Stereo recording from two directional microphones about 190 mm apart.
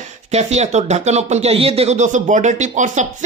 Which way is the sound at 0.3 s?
35° right (ahead or behind).